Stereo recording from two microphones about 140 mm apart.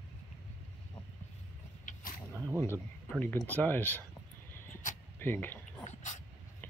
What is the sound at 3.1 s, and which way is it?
Speech, 10° left (ahead or behind).